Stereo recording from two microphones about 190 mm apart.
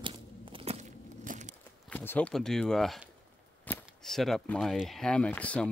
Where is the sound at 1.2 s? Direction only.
40° right (ahead or behind).